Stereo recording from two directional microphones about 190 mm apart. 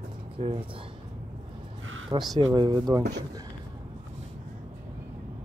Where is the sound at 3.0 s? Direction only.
60° right (ahead or behind).